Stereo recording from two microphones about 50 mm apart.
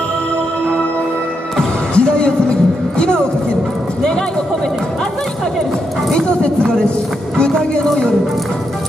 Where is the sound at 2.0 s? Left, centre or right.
Centre.